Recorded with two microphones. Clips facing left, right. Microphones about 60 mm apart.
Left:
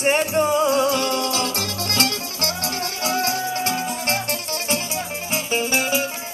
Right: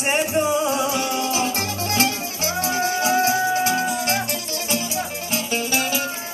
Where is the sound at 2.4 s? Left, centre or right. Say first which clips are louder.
Right 5 dB; right.